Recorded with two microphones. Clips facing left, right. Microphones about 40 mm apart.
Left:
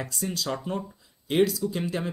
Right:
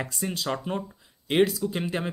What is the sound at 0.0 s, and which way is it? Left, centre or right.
Speech, right.